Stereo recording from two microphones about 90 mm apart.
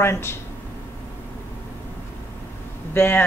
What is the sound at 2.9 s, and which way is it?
Speech, 25° left (ahead or behind).